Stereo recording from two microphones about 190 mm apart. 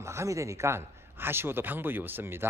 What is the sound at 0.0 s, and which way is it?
Speech, 15° right (ahead or behind).